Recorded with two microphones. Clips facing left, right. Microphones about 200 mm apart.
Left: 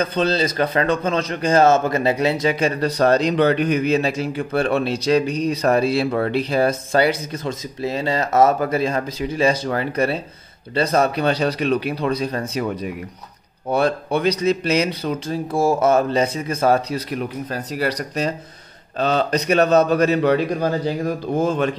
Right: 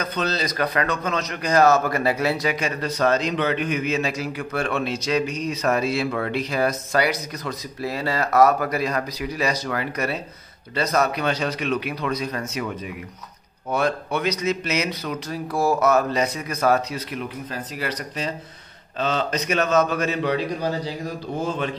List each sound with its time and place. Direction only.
0.0 s a man's voice: 30° left (ahead or behind)
2.4 s a man's voice: 35° left (ahead or behind)